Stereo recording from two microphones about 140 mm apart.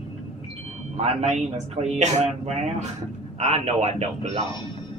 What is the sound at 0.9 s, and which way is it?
Speech, 55° right (ahead or behind).